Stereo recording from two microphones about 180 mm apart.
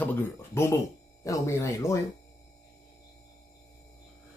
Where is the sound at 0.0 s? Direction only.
10° left (ahead or behind).